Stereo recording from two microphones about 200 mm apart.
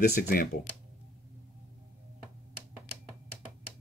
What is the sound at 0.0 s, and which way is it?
Speech, 50° left (ahead or behind).